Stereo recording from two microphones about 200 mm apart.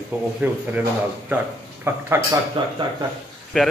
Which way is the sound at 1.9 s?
10° right (ahead or behind).